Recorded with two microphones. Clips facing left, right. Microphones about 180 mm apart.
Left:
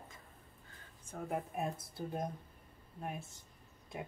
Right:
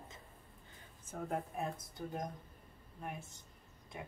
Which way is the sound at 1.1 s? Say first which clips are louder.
Right 1 dB; 5° right (ahead or behind).